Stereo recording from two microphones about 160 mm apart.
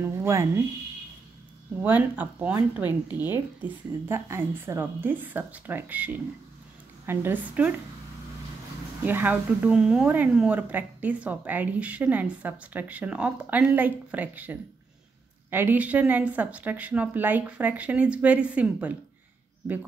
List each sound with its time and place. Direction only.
0.0 s speech: 15° right (ahead or behind)
1.8 s speech: 10° right (ahead or behind)
9.0 s speech: 10° right (ahead or behind)